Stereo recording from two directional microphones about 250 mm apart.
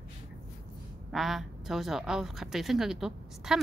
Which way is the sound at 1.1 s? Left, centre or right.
Centre.